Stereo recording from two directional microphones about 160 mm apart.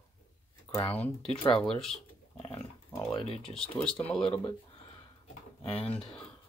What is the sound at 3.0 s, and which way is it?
Speech, 35° left (ahead or behind).